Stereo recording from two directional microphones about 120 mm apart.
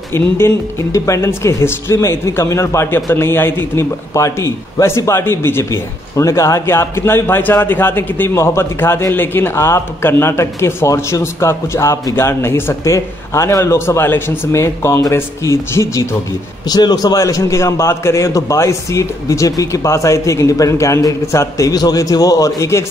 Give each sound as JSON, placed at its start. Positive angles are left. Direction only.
{"t": 0.1, "sound": "a man's voice", "side_deg": 20}